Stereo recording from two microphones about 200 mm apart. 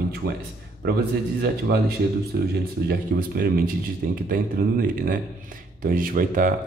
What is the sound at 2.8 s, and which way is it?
Speech, 50° right (ahead or behind).